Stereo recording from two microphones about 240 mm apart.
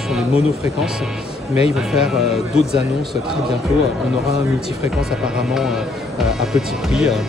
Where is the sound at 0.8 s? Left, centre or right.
Centre.